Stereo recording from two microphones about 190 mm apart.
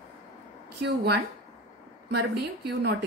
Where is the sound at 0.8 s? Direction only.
60° right (ahead or behind).